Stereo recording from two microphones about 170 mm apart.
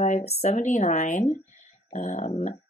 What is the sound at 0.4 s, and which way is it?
Speech, 45° left (ahead or behind).